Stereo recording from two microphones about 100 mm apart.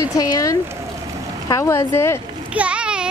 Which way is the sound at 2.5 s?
10° right (ahead or behind).